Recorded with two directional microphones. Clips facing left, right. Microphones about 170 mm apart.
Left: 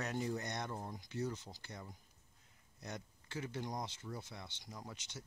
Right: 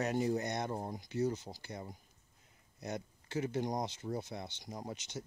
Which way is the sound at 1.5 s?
30° right (ahead or behind).